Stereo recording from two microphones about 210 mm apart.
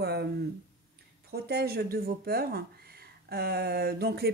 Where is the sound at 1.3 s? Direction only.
50° right (ahead or behind).